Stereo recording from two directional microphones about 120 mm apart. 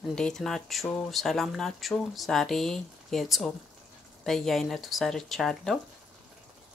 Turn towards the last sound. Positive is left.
turn(degrees=0)  # may be behind; listen again after turning